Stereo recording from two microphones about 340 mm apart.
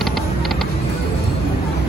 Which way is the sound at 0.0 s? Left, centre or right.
Centre.